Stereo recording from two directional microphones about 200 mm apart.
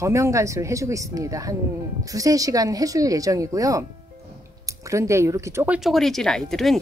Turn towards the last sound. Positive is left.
turn(degrees=0)  # may be behind; listen again after turning